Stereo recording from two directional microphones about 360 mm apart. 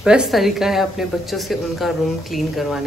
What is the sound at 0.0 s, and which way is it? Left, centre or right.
Speech, centre.